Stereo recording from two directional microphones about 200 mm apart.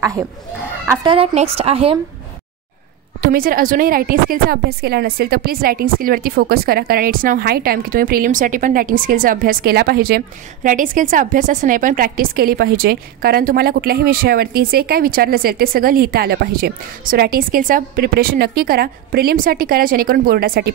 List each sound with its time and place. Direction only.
1.0 s speech: 30° right (ahead or behind)
3.2 s a woman's voice: 45° right (ahead or behind)